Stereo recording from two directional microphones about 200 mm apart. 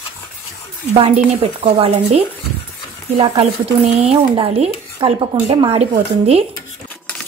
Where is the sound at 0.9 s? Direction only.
30° right (ahead or behind).